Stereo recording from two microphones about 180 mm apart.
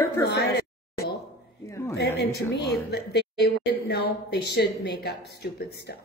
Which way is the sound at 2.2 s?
15° left (ahead or behind).